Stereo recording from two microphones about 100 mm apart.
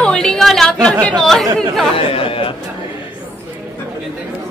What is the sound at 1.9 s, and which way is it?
Speech, 65° left (ahead or behind).